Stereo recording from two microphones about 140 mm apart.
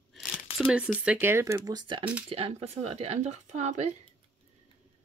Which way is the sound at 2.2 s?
45° right (ahead or behind).